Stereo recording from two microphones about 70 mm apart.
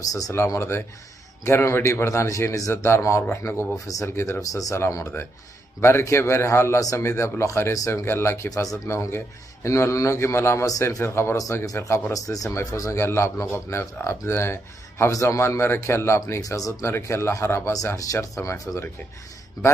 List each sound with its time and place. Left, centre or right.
0.6 s speech: left
2.7 s speech: left
3.7 s a man's voice: left
5.8 s speech: left
8.5 s a man's voice: left
11.3 s a man's voice: left
12.1 s speech: left
12.4 s speech: left
15.0 s speech: left
16.3 s a man's voice: left
16.8 s speech: left
17.9 s a man's voice: left